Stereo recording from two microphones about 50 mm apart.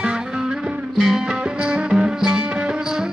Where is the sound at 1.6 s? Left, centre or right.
Centre.